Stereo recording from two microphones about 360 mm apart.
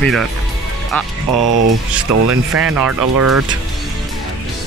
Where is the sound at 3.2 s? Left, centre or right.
Right.